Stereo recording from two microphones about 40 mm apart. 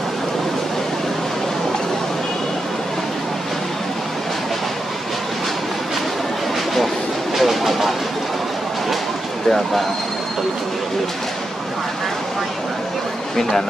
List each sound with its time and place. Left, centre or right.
7.3 s vehicle: centre
9.5 s speech: centre
13.4 s speech: centre